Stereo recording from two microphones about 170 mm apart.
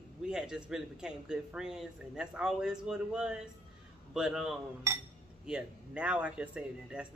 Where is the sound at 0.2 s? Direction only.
5° right (ahead or behind).